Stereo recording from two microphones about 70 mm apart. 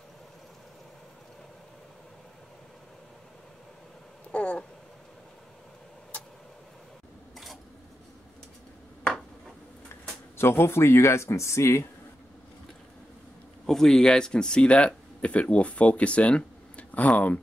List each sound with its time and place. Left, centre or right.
4.3 s a sound: centre
10.3 s speech: left
13.7 s speech: centre